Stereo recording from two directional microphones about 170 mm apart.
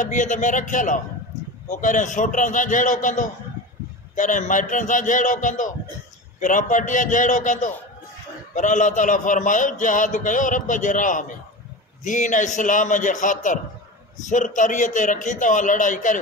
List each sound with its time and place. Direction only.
0.0 s a man's voice: 45° left (ahead or behind)